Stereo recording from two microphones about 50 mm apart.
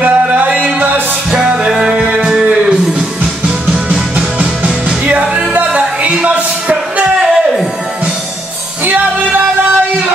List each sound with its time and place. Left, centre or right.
0.0 s music: right; by 2.0 s centre
2.0 s music: right
2.2 s music: centre
4.4 s music: right
8.8 s music: right